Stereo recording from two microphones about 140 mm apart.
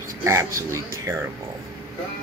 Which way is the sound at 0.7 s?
20° right (ahead or behind).